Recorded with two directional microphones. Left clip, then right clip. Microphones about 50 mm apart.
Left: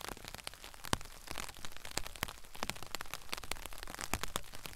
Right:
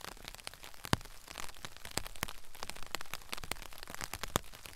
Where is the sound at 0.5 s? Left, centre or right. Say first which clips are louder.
Right 3 dB; centre.